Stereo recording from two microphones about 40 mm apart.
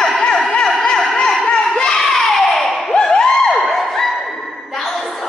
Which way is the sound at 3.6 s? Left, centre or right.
Centre.